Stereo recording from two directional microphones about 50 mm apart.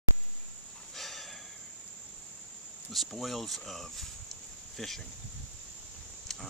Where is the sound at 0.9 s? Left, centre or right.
Centre.